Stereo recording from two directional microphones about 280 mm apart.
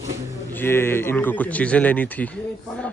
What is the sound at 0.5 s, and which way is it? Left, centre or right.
A man's voice, centre.